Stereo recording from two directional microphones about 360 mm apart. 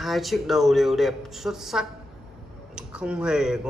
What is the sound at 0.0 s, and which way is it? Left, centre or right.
Speech, centre.